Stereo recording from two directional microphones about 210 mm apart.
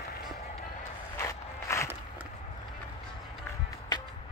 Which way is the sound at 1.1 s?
15° left (ahead or behind).